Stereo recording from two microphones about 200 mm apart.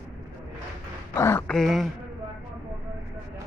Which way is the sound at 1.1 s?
10° left (ahead or behind).